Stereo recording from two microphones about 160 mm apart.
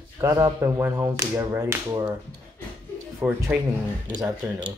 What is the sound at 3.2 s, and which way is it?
Whip, 15° right (ahead or behind).